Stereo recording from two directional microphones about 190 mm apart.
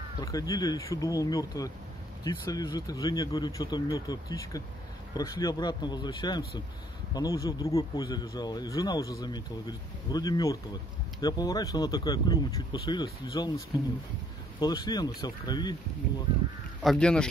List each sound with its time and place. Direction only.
0.2 s speech: 20° left (ahead or behind)
14.6 s speech: 20° left (ahead or behind)
16.8 s speech: centre (ahead or behind)